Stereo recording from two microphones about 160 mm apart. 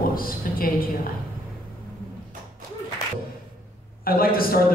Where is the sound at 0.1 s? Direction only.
65° left (ahead or behind).